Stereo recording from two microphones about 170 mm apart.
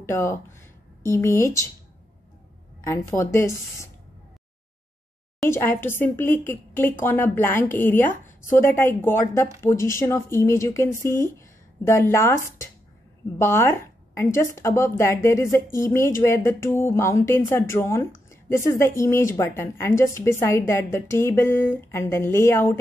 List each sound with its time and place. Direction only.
0.0 s speech: 15° left (ahead or behind)
2.8 s speech: 15° left (ahead or behind)
5.5 s speech: 15° left (ahead or behind)